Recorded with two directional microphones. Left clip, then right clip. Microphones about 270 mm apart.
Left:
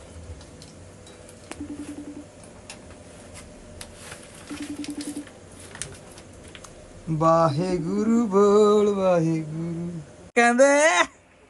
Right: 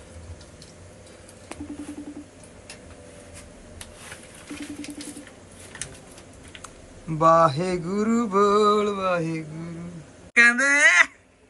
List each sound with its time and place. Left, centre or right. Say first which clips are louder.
4.6 s patter: left 3 dB; centre
7.1 s mantra: right 2 dB; centre